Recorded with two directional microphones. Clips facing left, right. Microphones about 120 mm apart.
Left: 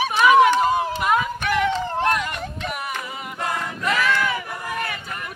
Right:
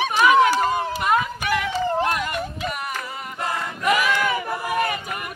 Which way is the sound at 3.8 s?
10° right (ahead or behind).